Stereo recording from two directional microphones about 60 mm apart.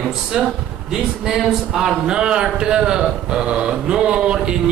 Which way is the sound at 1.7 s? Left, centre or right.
Centre.